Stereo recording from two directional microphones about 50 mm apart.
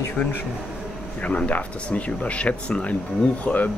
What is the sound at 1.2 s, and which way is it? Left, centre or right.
Speech, left.